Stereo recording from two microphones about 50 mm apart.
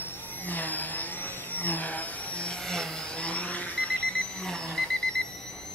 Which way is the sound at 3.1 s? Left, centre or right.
Left.